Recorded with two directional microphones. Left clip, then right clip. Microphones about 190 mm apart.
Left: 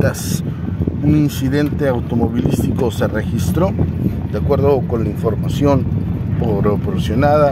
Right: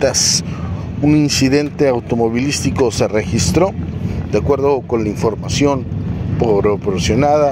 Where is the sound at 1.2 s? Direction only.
15° right (ahead or behind).